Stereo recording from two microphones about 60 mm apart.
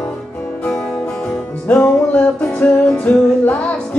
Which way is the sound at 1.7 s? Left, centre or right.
Left.